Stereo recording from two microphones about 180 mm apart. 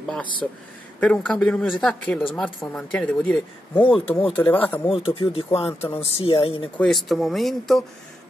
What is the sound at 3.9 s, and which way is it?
Speech, 30° left (ahead or behind).